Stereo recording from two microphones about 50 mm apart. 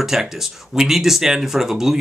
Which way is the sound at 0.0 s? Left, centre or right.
Centre.